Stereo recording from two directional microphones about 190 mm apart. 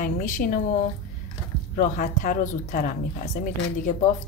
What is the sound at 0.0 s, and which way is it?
Speech, 45° left (ahead or behind).